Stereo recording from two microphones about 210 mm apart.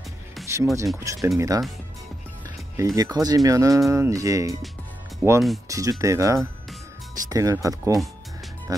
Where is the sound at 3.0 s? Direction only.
20° right (ahead or behind).